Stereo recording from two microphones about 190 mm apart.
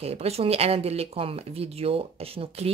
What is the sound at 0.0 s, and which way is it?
Speech, 35° right (ahead or behind).